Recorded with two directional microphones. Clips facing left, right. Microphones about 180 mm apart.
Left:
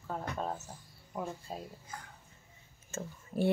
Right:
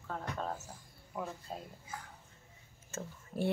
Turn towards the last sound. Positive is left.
turn(degrees=0)  # may be behind; listen again after turning